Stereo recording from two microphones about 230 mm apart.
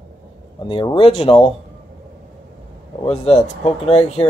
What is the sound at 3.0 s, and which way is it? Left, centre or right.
Speech, left.